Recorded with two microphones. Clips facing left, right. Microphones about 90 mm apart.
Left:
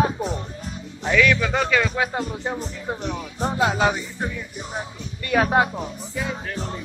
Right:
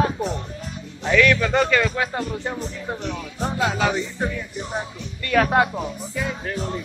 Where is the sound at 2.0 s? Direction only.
15° left (ahead or behind).